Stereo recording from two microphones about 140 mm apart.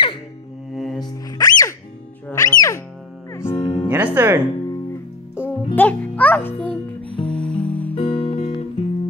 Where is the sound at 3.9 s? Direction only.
15° right (ahead or behind).